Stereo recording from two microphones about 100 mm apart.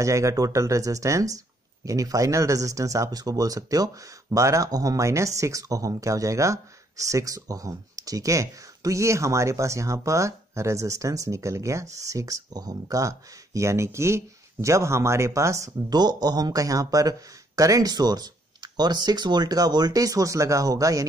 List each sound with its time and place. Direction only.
0.0 s speech: 30° right (ahead or behind)
15.9 s speech: 45° right (ahead or behind)